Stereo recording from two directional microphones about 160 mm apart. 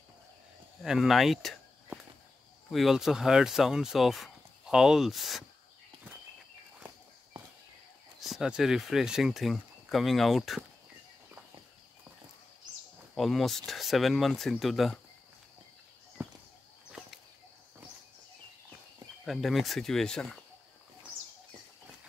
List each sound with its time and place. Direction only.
0.8 s speech: centre (ahead or behind)
8.2 s speech: 5° right (ahead or behind)
13.1 s speech: centre (ahead or behind)
16.2 s walk: 10° right (ahead or behind)
19.2 s speech: centre (ahead or behind)